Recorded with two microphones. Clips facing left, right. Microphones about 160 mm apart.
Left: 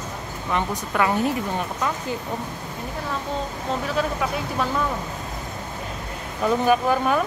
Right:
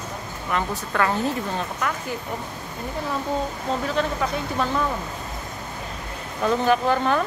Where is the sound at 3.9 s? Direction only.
5° left (ahead or behind).